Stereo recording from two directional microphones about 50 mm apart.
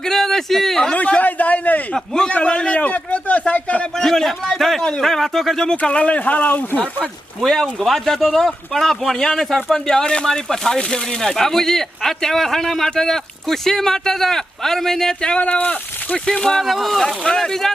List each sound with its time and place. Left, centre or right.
0.0 s a sound: centre
0.9 s a sound: left
2.0 s speech: centre
2.3 s a sound: centre
3.9 s a man's voice: centre
5.8 s speech: left
7.4 s speech: centre
15.2 s speech: left
16.3 s speech: centre
16.6 s speech: centre